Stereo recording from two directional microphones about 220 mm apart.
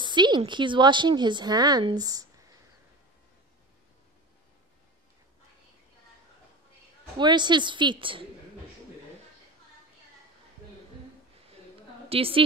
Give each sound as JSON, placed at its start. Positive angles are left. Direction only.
{"t": 0.0, "sound": "a woman's voice", "side_deg": -20}
{"t": 7.2, "sound": "a woman's voice", "side_deg": -20}
{"t": 12.1, "sound": "a woman's voice", "side_deg": -25}